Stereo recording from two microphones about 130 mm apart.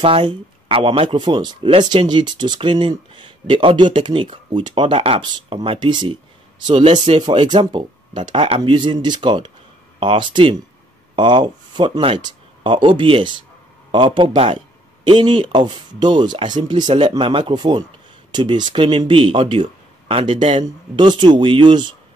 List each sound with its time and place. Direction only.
0.0 s speech: 45° right (ahead or behind)